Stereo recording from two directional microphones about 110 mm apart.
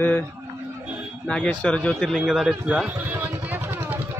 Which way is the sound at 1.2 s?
5° left (ahead or behind).